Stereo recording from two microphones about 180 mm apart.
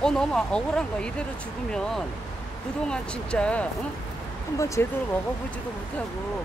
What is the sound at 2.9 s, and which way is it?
Speech, 5° left (ahead or behind).